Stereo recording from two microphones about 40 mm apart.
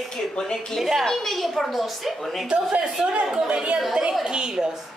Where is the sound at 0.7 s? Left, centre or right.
Centre.